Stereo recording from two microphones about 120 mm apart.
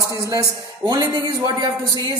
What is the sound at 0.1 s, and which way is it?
A man's voice, 30° right (ahead or behind).